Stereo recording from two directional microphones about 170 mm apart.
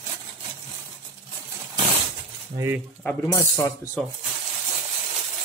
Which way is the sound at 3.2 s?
20° left (ahead or behind).